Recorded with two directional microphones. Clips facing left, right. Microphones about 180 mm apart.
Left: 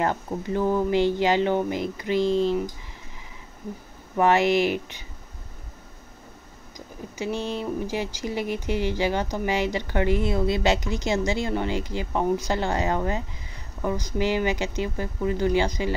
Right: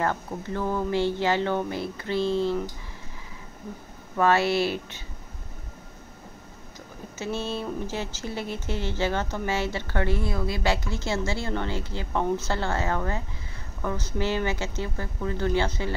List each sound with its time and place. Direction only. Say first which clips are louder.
0.0 s speech: left 2 dB; 15° left (ahead or behind)
4.2 s speech: left 2 dB; 15° left (ahead or behind)
7.2 s speech: left 2 dB; 15° left (ahead or behind)